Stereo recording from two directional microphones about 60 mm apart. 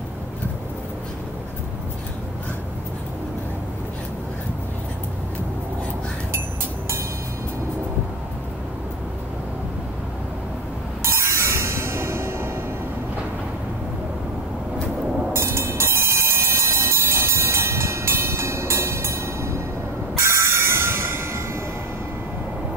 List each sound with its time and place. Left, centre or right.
11.1 s music: right
15.3 s train: right